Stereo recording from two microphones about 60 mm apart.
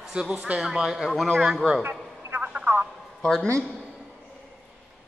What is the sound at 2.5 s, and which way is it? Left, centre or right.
Telephone, right.